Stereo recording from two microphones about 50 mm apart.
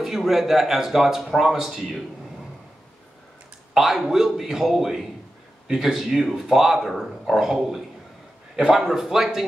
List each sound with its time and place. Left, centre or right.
0.0 s speech: centre
3.7 s speech: centre
8.5 s speech: centre